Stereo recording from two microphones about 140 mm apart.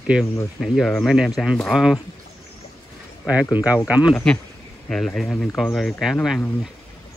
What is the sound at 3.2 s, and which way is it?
Speech, 10° right (ahead or behind).